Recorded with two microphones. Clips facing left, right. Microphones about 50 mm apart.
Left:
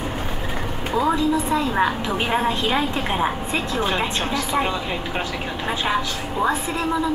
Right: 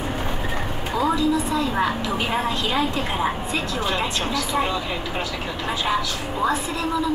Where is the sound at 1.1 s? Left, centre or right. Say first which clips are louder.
Left 1 dB; left.